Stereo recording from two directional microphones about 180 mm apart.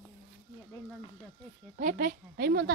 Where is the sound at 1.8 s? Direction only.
50° right (ahead or behind).